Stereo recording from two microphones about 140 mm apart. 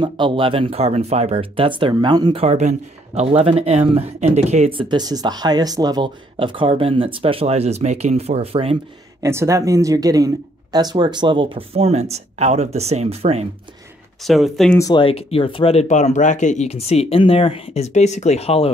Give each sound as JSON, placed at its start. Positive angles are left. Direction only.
{"t": 0.0, "sound": "speech", "side_deg": -35}
{"t": 2.4, "sound": "speech", "side_deg": -55}
{"t": 3.2, "sound": "speech", "side_deg": -45}
{"t": 9.2, "sound": "speech", "side_deg": -20}
{"t": 14.2, "sound": "speech", "side_deg": 0}
{"t": 15.0, "sound": "speech", "side_deg": 45}